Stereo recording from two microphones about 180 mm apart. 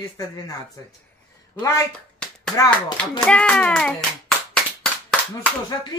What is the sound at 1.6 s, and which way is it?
Speech, 15° left (ahead or behind).